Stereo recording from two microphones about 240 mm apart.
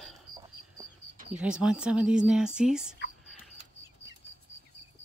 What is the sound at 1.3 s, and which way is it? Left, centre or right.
Speech, centre.